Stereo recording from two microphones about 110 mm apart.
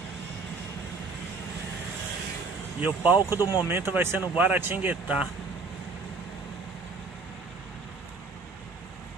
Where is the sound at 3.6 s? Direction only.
20° right (ahead or behind).